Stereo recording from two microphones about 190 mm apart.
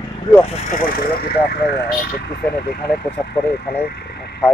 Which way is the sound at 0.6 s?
45° left (ahead or behind).